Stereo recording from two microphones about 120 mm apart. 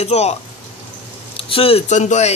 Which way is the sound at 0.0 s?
65° left (ahead or behind).